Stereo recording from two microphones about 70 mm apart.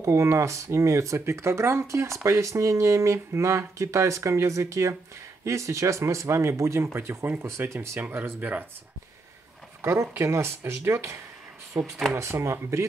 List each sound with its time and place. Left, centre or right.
0.0 s speech: right
8.0 s speech: right
9.8 s speech: right
12.2 s speech: right